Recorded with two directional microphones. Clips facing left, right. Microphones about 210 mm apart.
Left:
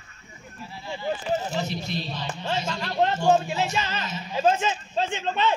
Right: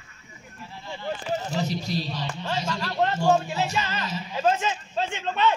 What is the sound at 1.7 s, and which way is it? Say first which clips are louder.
Speech: right 2 dB; 35° right (ahead or behind).